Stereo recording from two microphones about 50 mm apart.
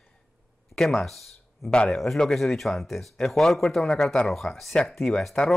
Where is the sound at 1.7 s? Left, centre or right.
Centre.